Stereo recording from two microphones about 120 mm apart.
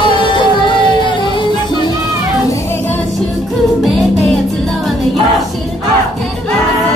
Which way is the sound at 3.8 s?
Centre (ahead or behind).